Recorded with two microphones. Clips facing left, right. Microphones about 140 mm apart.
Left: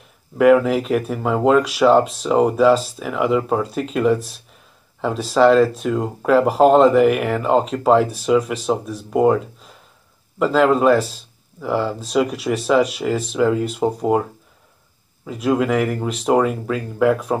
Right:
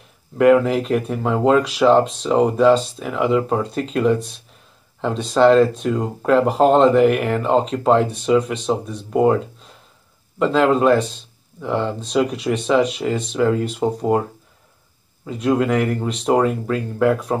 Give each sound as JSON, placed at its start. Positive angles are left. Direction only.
{"t": 0.4, "sound": "speech", "side_deg": 0}
{"t": 15.2, "sound": "speech", "side_deg": 5}